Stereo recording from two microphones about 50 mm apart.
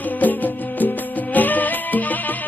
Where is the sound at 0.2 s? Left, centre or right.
Left.